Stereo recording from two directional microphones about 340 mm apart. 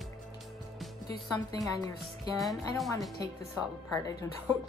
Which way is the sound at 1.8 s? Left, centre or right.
Centre.